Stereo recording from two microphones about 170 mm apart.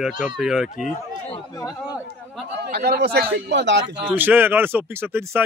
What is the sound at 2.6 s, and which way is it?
Speech, 75° right (ahead or behind).